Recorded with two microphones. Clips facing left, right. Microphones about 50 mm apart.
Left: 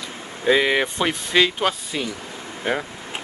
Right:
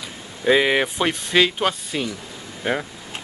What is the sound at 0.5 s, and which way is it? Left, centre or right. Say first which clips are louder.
Speech: right 1 dB; centre.